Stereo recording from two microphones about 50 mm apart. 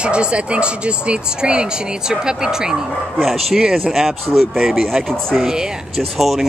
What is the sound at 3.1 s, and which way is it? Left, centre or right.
Speech, centre.